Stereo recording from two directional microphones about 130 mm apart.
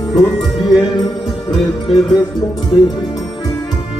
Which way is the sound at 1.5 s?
Centre (ahead or behind).